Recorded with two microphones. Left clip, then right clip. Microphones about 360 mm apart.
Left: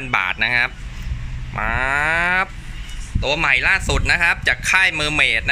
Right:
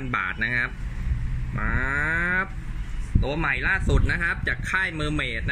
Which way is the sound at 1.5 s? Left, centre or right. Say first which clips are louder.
Left 7 dB; centre.